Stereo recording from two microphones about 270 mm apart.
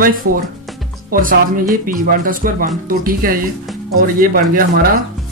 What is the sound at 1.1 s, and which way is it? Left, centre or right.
Speech, right.